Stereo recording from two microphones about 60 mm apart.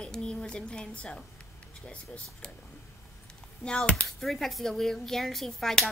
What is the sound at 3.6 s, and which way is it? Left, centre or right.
Speech, centre.